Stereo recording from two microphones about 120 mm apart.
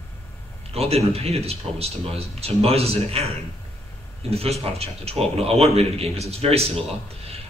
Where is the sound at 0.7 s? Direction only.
55° right (ahead or behind).